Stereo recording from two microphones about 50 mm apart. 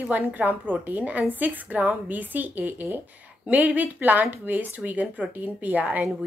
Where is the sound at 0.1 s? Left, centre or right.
Right.